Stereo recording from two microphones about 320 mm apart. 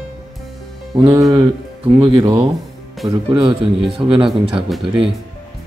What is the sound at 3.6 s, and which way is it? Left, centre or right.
Speech, centre.